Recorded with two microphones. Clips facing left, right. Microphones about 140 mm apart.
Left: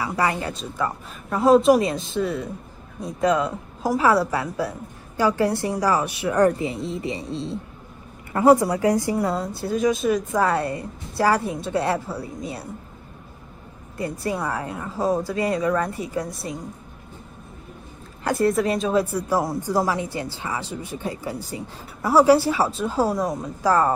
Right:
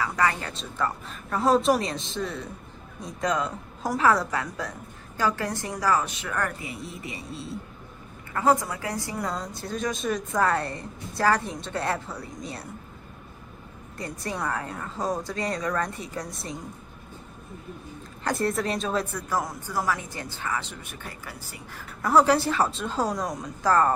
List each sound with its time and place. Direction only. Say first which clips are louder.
0.0 s speech: left 2 dB; 15° left (ahead or behind)
0.5 s a woman's voice: left 3 dB; 5° left (ahead or behind)
14.2 s a woman's voice: left 3 dB; 10° left (ahead or behind)
18.2 s a woman's voice: left 6 dB; centre (ahead or behind)